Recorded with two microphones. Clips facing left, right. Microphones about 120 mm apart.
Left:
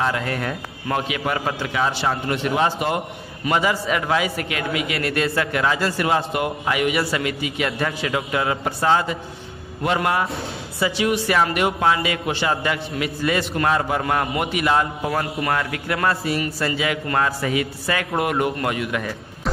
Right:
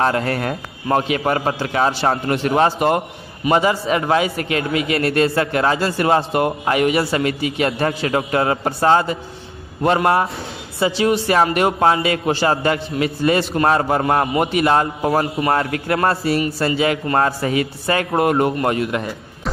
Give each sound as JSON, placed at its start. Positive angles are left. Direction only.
{"t": 0.0, "sound": "a man's voice", "side_deg": -45}
{"t": 3.4, "sound": "a man's voice", "side_deg": -30}
{"t": 7.2, "sound": "a man's voice", "side_deg": -35}
{"t": 15.6, "sound": "a man's voice", "side_deg": -45}
{"t": 16.0, "sound": "a man's voice", "side_deg": -30}